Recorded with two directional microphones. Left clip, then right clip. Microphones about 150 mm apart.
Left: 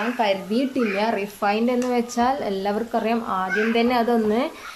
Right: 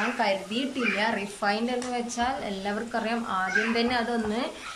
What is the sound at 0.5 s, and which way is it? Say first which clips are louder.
Speech: left 5 dB; 25° left (ahead or behind).